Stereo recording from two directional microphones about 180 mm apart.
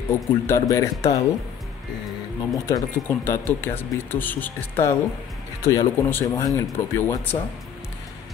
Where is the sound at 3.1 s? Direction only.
10° left (ahead or behind).